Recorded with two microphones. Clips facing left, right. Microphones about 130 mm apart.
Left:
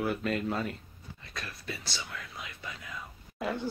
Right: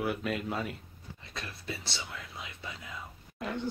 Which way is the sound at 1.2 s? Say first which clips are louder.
Even; 25° right (ahead or behind).